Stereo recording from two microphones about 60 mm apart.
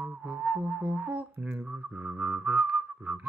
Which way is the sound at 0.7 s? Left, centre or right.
Right.